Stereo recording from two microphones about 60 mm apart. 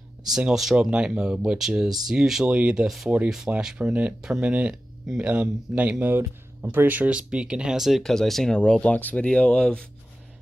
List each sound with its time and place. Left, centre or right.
0.3 s speech: centre
2.4 s speech: centre
7.2 s speech: centre
8.0 s speech: centre
8.5 s speech: centre